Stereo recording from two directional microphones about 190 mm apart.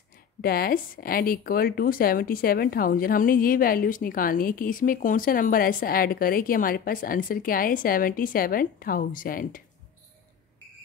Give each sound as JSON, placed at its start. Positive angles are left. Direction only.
{"t": 0.4, "sound": "speech", "side_deg": 55}